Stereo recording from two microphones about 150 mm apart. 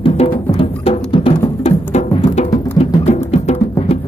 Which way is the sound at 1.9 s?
50° left (ahead or behind).